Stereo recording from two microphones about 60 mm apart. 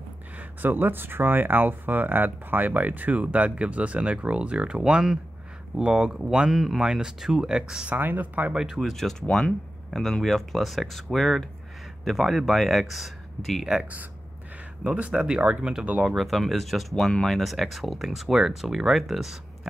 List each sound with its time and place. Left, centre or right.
0.4 s speech: right; by 7.9 s centre
7.9 s speech: right
8.5 s speech: centre
9.9 s speech: centre
14.8 s speech: right
16.2 s speech: centre